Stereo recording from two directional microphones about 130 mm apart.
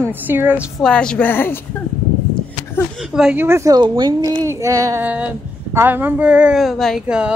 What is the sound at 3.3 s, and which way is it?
Speech, 20° right (ahead or behind).